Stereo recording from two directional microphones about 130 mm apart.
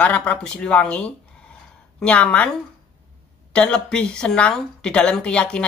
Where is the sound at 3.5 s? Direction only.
5° left (ahead or behind).